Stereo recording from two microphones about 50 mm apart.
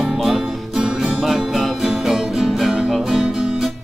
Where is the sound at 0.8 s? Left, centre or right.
Centre.